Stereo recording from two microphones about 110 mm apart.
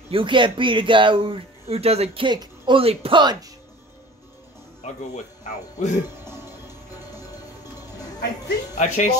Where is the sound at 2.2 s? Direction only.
45° right (ahead or behind).